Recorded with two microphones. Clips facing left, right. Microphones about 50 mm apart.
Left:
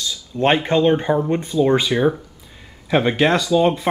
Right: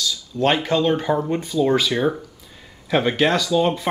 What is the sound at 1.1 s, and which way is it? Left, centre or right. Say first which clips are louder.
Speech: left 2 dB; centre.